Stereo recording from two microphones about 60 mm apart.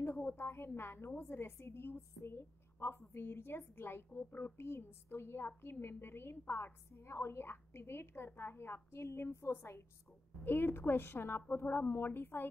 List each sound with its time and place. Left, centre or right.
0.0 s a woman's voice: left